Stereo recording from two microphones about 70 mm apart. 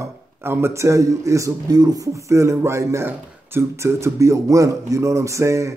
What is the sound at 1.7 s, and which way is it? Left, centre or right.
Speech, right.